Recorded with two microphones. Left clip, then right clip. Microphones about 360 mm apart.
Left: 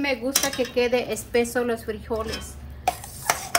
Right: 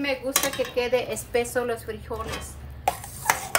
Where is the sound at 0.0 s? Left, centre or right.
Centre.